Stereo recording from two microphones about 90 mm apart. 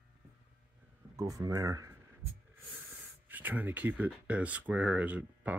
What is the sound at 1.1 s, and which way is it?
Speech, 40° right (ahead or behind).